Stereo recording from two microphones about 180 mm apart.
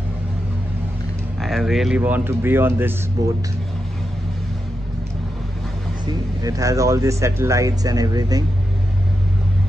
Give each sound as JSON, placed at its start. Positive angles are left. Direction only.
{"t": 1.4, "sound": "speech", "side_deg": 0}
{"t": 6.4, "sound": "speech", "side_deg": -20}